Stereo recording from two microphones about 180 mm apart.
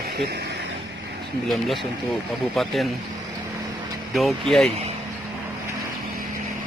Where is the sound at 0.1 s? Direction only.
65° right (ahead or behind).